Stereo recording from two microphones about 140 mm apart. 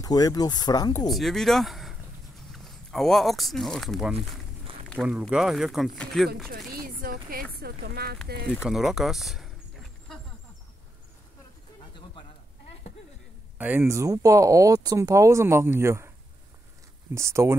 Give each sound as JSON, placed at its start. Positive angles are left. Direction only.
{"t": 0.0, "sound": "speech", "side_deg": 25}
{"t": 1.1, "sound": "speech", "side_deg": 0}
{"t": 6.7, "sound": "a sound", "side_deg": -90}
{"t": 7.6, "sound": "speech", "side_deg": -90}
{"t": 8.6, "sound": "speech", "side_deg": 0}
{"t": 13.6, "sound": "speech", "side_deg": -15}
{"t": 17.1, "sound": "speech", "side_deg": -20}